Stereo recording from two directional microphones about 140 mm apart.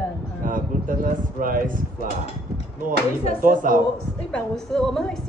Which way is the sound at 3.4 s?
75° right (ahead or behind).